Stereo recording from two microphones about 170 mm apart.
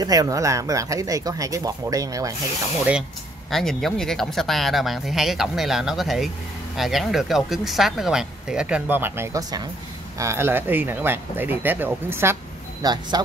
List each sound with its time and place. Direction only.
0.0 s speech: 20° right (ahead or behind)
3.4 s speech: centre (ahead or behind)
12.8 s speech: 25° right (ahead or behind)